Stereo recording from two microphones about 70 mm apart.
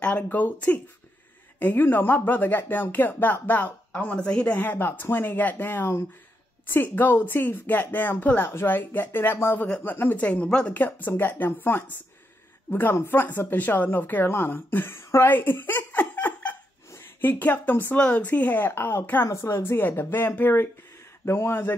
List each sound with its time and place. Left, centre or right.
0.0 s speech: left
4.6 s speech: left
10.7 s speech: left
15.3 s giggle: left
17.2 s speech: left
18.7 s speech: left
19.2 s speech: left